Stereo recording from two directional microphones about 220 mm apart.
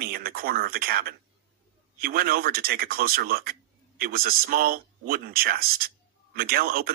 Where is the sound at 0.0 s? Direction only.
45° right (ahead or behind).